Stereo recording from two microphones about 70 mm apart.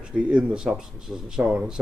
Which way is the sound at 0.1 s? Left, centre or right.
Centre.